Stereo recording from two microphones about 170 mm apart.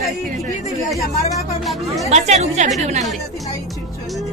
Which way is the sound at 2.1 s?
40° right (ahead or behind).